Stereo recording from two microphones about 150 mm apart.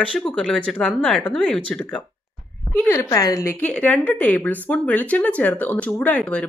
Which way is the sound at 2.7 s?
20° left (ahead or behind).